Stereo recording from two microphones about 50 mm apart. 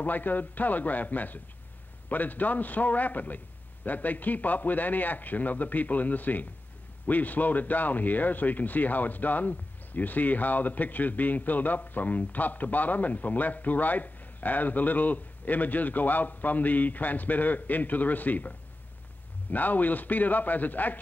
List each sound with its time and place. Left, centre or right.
0.0 s speech: left
19.5 s speech: left